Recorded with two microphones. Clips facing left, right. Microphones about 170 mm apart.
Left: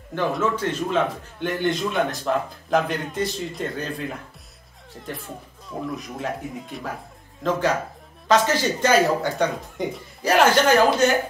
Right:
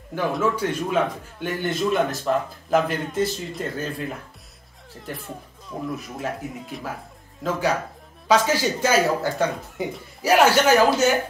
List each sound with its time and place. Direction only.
0.1 s a man's voice: 10° right (ahead or behind)
5.0 s a man's voice: centre (ahead or behind)
8.3 s speech: 10° right (ahead or behind)